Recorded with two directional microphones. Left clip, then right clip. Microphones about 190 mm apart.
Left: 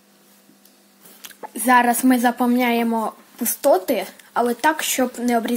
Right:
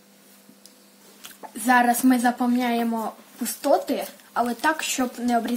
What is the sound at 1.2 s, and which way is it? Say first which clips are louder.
A woman's voice: left 5 dB; 25° left (ahead or behind).